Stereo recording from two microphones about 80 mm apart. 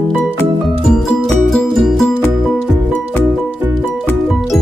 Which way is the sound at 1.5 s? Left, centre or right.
Centre.